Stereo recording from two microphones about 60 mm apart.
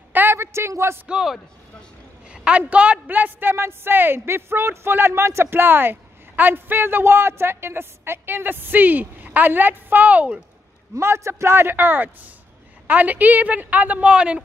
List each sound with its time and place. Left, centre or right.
0.1 s a sound: right
0.4 s a woman's voice: right
1.0 s a man's voice: centre
11.0 s a man's voice: right
11.7 s a woman's voice: right